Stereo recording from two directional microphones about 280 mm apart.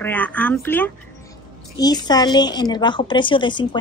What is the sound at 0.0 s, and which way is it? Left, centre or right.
Speech, centre.